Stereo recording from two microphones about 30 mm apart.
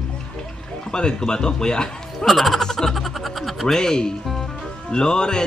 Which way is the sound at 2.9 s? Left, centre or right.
Centre.